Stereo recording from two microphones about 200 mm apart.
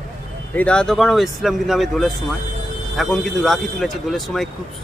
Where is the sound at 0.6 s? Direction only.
5° left (ahead or behind).